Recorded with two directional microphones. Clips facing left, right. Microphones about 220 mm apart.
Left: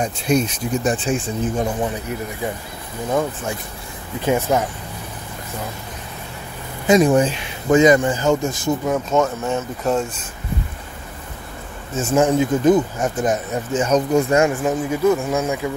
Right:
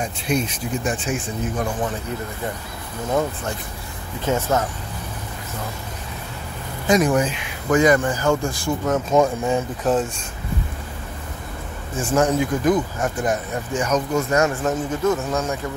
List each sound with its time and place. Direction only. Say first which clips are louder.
0.3 s speech: left 4 dB; 40° left (ahead or behind)
3.1 s speech: left 1 dB; centre (ahead or behind)
4.3 s a man's voice: left 3 dB; 10° left (ahead or behind)
6.9 s speech: left 4 dB; 25° left (ahead or behind)
8.9 s speech: right 5 dB; 10° right (ahead or behind)
11.9 s speech: left 3 dB; 25° left (ahead or behind)
13.9 s speech: left 4 dB; 35° left (ahead or behind)
14.4 s a man's voice: left 2 dB; 15° left (ahead or behind)